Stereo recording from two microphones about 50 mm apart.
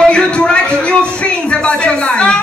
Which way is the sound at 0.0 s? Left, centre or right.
Centre.